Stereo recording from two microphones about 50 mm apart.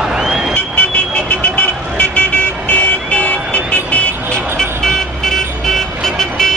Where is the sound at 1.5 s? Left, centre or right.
Left.